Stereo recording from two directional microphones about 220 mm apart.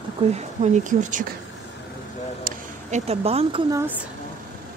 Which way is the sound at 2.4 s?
30° right (ahead or behind).